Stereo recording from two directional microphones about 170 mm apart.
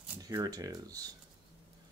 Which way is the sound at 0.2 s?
20° right (ahead or behind).